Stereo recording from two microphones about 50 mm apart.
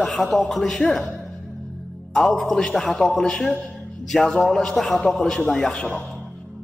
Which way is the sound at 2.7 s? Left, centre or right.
Centre.